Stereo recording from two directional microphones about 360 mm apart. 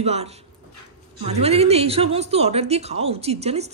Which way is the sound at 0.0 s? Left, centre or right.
Centre.